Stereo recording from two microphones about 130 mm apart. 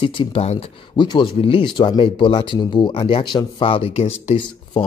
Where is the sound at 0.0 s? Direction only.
40° left (ahead or behind).